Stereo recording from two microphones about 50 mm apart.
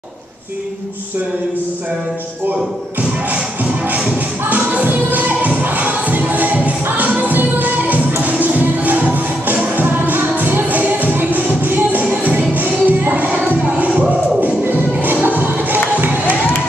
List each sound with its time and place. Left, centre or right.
3.9 s music: right
16.0 s crowd: right